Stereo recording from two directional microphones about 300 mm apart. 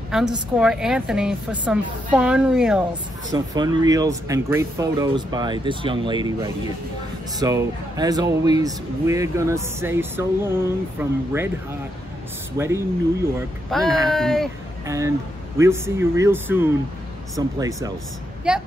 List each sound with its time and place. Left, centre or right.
0.6 s a woman's voice: centre
3.3 s speech: centre
12.5 s a woman's voice: centre
14.9 s a woman's voice: centre